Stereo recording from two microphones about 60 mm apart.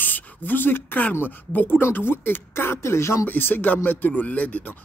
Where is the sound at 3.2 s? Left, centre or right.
Left.